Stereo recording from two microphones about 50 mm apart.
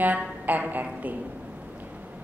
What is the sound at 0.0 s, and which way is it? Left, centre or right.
A woman's voice, right.